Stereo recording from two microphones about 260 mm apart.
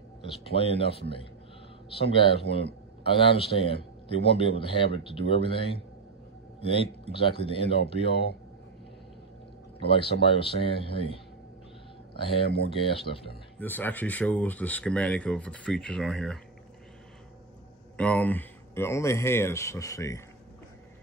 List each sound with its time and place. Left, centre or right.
0.2 s a man's voice: left
6.6 s speech: left
9.8 s speech: left
12.1 s speech: left
13.6 s speech: centre
17.9 s speech: centre